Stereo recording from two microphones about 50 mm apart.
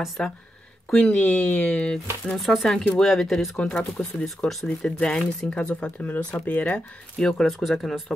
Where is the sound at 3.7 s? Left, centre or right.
Left.